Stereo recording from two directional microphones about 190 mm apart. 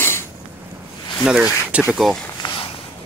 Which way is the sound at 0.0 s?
15° left (ahead or behind).